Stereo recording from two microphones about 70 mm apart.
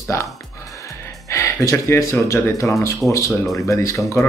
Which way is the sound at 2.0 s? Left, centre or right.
Left.